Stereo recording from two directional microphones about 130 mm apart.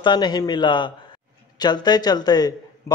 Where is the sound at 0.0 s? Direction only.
35° left (ahead or behind).